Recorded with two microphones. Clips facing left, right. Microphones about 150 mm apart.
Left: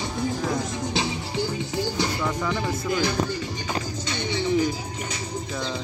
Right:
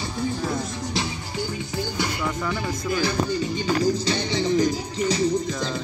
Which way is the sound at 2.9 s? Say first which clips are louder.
Right 1 dB; 20° left (ahead or behind).